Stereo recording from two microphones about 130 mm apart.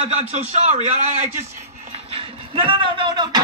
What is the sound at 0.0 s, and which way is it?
A man's voice, 60° right (ahead or behind).